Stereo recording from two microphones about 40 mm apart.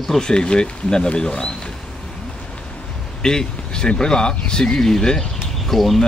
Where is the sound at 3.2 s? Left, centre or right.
Centre.